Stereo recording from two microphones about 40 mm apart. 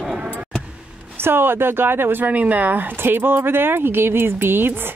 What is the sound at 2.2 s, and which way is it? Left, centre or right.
Speech, right.